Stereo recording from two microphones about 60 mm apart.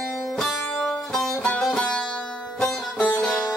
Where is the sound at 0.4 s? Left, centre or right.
Centre.